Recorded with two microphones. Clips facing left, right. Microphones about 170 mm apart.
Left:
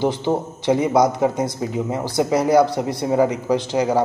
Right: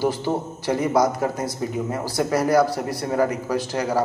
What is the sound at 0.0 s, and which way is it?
A man's voice, 20° left (ahead or behind).